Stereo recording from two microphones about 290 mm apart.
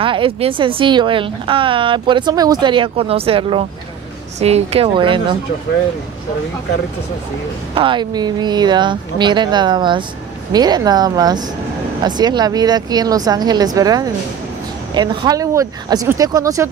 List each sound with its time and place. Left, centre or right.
0.0 s a woman's voice: centre
7.7 s a woman's voice: centre